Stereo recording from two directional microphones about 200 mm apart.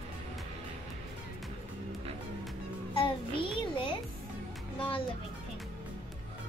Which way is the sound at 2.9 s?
25° left (ahead or behind).